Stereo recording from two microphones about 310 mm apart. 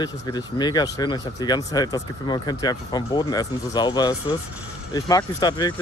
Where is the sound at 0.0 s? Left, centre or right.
Centre.